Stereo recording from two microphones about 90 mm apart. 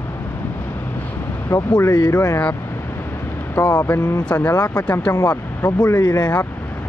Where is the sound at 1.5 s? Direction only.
45° left (ahead or behind).